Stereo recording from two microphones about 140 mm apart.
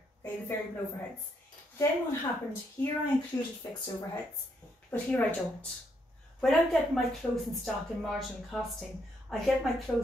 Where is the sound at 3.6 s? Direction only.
25° left (ahead or behind).